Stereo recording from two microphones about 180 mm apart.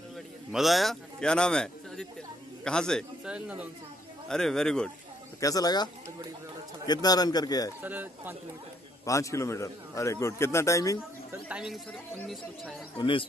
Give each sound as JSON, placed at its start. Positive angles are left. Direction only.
{"t": 0.5, "sound": "a man's voice", "side_deg": 0}
{"t": 5.4, "sound": "a man's voice", "side_deg": 20}
{"t": 6.9, "sound": "a man's voice", "side_deg": 20}
{"t": 7.8, "sound": "speech", "side_deg": -10}
{"t": 9.0, "sound": "a man's voice", "side_deg": 15}
{"t": 11.4, "sound": "speech", "side_deg": -5}
{"t": 12.9, "sound": "a man's voice", "side_deg": 25}